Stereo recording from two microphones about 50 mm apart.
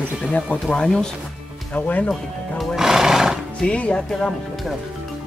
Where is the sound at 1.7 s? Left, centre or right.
Left.